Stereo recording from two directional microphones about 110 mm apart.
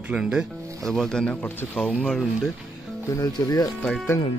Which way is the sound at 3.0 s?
30° left (ahead or behind).